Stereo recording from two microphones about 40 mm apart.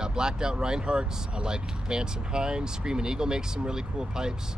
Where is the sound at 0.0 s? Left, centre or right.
Centre.